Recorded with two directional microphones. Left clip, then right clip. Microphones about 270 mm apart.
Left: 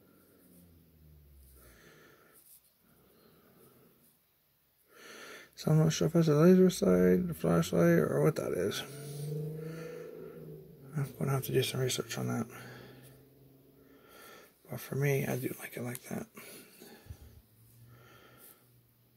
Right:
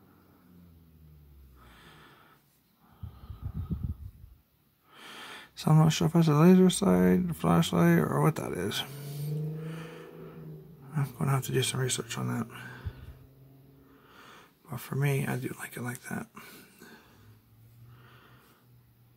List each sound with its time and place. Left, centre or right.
4.9 s a sound: centre
6.0 s speech: centre
10.9 s a sound: centre
11.3 s speech: centre
14.1 s sniff: centre
15.0 s speech: centre